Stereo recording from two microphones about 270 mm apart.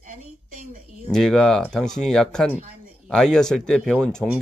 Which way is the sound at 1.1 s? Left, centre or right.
Centre.